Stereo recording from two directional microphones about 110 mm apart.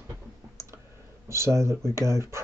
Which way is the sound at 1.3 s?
25° right (ahead or behind).